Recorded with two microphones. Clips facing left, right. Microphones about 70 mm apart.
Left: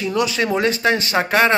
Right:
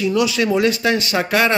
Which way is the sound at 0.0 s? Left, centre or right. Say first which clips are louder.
Right 2 dB; left.